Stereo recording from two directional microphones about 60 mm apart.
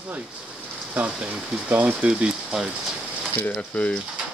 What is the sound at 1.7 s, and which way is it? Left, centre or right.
Speech, right.